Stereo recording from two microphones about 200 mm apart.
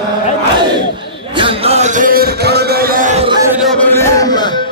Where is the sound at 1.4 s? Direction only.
30° right (ahead or behind).